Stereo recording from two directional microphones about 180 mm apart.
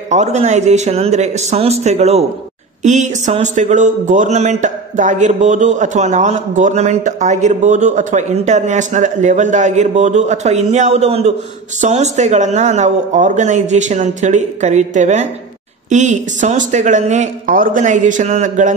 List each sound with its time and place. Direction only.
0.1 s speech: 40° right (ahead or behind)